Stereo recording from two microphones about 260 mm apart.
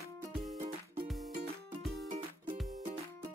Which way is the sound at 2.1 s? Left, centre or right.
Right.